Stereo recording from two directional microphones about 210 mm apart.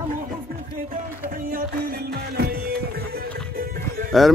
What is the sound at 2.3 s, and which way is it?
Music, 50° right (ahead or behind).